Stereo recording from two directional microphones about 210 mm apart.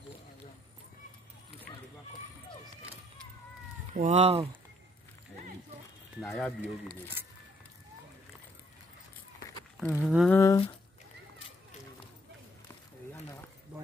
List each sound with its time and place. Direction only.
3.9 s speech: 35° right (ahead or behind)
6.2 s speech: centre (ahead or behind)
9.8 s speech: centre (ahead or behind)
10.3 s speech: 15° left (ahead or behind)